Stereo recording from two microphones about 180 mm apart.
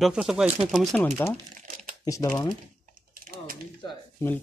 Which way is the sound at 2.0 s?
20° left (ahead or behind).